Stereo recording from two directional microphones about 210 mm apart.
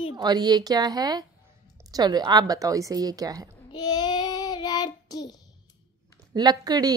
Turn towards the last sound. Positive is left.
turn(degrees=-20)  # may be behind; listen again after turning